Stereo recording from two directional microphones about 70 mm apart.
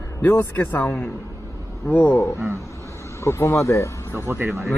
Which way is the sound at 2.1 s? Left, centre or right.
Left.